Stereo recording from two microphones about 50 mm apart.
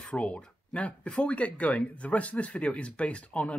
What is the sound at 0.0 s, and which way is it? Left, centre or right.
Speech, left.